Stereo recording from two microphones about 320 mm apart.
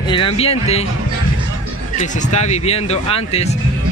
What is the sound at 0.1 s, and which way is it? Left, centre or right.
Speech, centre.